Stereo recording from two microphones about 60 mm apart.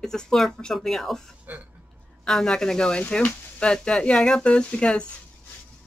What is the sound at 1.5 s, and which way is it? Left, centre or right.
Speech, right.